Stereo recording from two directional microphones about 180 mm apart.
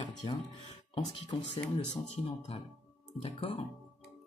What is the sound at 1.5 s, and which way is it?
Speech, 35° left (ahead or behind).